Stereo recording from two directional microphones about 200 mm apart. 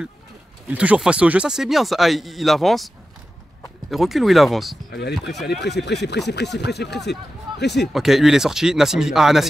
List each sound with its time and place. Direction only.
0.7 s speech: 5° right (ahead or behind)
3.9 s speech: centre (ahead or behind)
4.9 s speech: 55° left (ahead or behind)
7.9 s speech: centre (ahead or behind)